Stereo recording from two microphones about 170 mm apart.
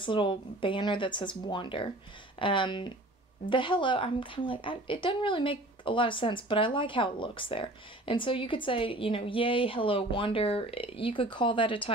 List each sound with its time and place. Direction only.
0.0 s a woman's voice: 30° left (ahead or behind)